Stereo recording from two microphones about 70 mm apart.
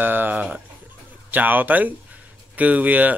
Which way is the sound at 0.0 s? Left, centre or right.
Right.